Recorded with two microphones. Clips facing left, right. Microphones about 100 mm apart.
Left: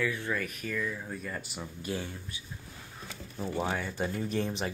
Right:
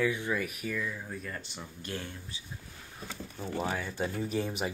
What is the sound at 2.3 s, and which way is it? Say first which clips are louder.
Speech: left 1 dB; 30° right (ahead or behind).